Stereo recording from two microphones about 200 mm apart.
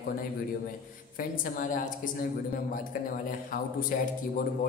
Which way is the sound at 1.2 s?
45° left (ahead or behind).